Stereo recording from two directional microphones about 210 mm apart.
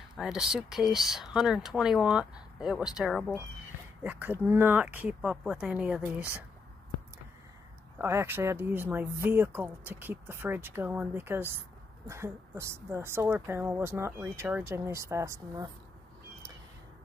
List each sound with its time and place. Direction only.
0.2 s speech: centre (ahead or behind)
8.0 s speech: 10° right (ahead or behind)